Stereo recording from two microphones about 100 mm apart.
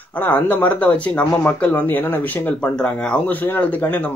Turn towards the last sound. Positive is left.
turn(degrees=15)  # may be behind; listen again after turning